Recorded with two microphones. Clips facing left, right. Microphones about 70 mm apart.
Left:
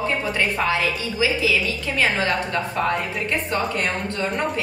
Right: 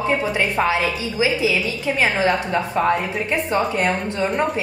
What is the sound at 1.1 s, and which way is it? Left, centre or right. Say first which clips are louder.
A woman's voice: right 2 dB; right.